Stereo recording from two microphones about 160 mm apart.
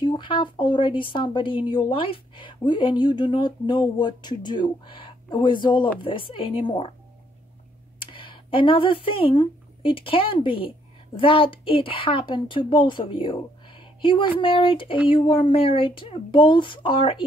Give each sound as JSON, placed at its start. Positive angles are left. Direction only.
{"t": 0.0, "sound": "speech", "side_deg": 30}
{"t": 8.0, "sound": "speech", "side_deg": 35}